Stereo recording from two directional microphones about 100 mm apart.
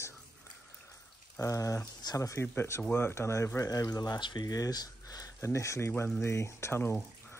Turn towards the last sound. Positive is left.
turn(degrees=25)  # may be behind; listen again after turning